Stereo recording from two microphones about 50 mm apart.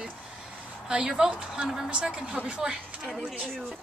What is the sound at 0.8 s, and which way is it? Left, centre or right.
A woman's voice, centre.